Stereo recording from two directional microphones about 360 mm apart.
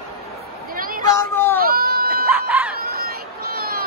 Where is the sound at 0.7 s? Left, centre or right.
Right.